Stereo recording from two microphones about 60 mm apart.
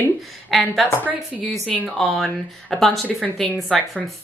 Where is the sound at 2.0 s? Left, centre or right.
Centre.